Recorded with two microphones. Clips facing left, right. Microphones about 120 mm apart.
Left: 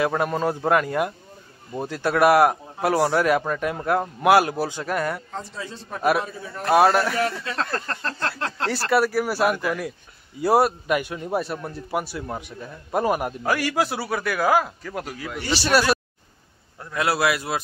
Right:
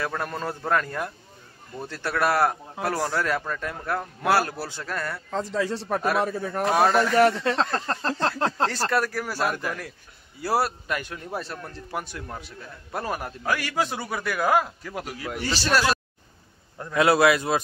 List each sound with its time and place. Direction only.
0.2 s a man's voice: 15° left (ahead or behind)
5.4 s a man's voice: 90° right
6.2 s speech: 55° right (ahead or behind)
6.7 s a man's voice: 5° left (ahead or behind)
7.2 s speech: 60° right (ahead or behind)
7.5 s speech: 20° right (ahead or behind)
8.0 s a sound: 35° right (ahead or behind)
8.9 s a man's voice: 10° left (ahead or behind)
15.4 s a man's voice: 10° left (ahead or behind)
16.8 s a man's voice: centre (ahead or behind)